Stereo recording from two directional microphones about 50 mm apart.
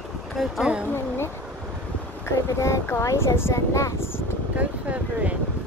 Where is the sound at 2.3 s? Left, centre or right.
Left.